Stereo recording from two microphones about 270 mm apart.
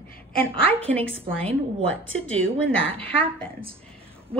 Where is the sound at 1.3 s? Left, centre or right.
Centre.